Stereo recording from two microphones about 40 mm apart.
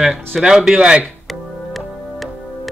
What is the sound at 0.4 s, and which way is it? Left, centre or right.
Speech, centre.